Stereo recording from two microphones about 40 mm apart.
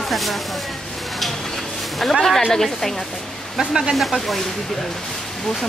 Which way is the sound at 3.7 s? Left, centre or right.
Centre.